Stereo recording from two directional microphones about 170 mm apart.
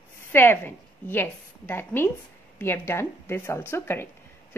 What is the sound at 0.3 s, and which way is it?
A woman's voice, 10° left (ahead or behind).